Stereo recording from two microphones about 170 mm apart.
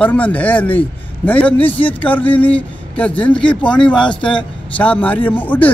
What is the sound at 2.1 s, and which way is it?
Speech, 10° left (ahead or behind).